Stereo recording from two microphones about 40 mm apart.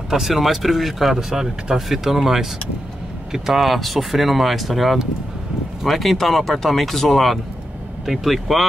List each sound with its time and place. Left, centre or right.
0.1 s speech: centre
3.6 s speech: centre